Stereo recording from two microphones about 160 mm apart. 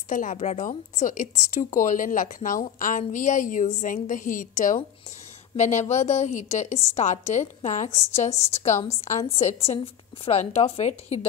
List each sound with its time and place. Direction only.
0.1 s a woman's voice: 50° left (ahead or behind)